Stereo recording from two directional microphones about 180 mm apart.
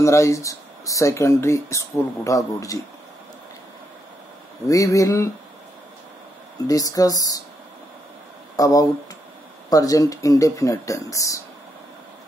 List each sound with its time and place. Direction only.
0.0 s speech: 15° left (ahead or behind)
4.6 s speech: 20° left (ahead or behind)
6.7 s speech: 20° left (ahead or behind)
8.5 s speech: 20° left (ahead or behind)